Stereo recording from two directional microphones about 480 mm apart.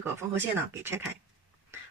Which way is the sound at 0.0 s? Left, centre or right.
Centre.